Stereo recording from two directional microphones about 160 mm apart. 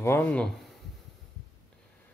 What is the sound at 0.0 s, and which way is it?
Speech, 15° left (ahead or behind).